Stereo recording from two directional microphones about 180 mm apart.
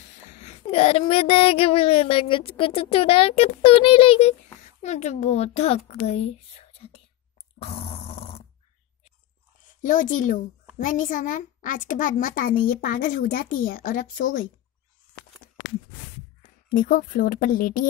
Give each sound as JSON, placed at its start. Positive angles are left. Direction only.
{"t": 0.3, "sound": "speech", "side_deg": 40}
{"t": 7.5, "sound": "a sound", "side_deg": 35}
{"t": 9.8, "sound": "a child's voice", "side_deg": 45}
{"t": 16.7, "sound": "a child's voice", "side_deg": 50}